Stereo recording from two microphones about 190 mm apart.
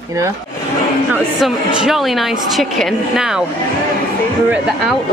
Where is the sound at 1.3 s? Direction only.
Centre (ahead or behind).